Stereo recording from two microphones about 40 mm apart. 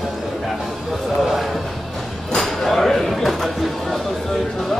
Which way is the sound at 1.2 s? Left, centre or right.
Centre.